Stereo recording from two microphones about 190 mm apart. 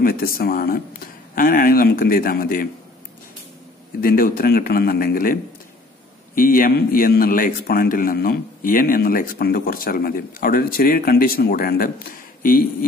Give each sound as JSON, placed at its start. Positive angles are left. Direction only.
{"t": 0.0, "sound": "a man's voice", "side_deg": 50}
{"t": 4.0, "sound": "a man's voice", "side_deg": 50}